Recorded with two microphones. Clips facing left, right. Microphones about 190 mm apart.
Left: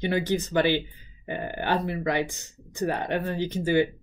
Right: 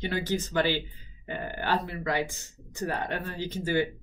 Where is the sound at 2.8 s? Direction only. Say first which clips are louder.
Left 5 dB; 20° left (ahead or behind).